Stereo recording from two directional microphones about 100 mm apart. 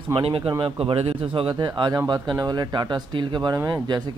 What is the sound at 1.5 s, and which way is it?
Speech, 45° right (ahead or behind).